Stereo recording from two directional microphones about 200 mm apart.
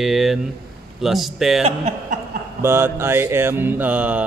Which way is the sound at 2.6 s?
10° right (ahead or behind).